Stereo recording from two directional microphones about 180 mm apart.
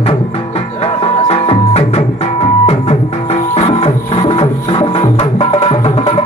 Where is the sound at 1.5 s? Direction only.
35° left (ahead or behind).